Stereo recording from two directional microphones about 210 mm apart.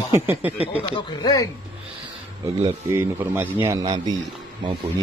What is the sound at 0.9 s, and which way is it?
Speech, 15° left (ahead or behind).